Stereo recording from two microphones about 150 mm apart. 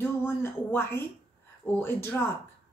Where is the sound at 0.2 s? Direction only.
15° left (ahead or behind).